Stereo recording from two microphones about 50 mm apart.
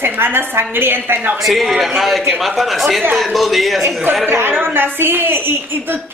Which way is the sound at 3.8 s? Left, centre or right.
Right.